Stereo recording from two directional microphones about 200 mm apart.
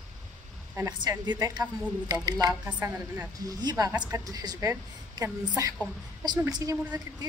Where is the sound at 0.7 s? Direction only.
20° right (ahead or behind).